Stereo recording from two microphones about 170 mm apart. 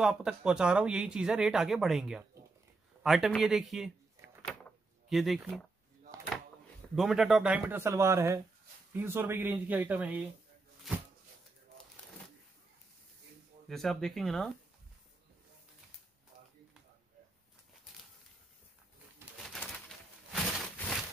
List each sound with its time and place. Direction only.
0.0 s speech: 5° right (ahead or behind)
4.5 s a sound: centre (ahead or behind)
7.0 s speech: centre (ahead or behind)
13.7 s speech: centre (ahead or behind)
19.3 s pigeon: centre (ahead or behind)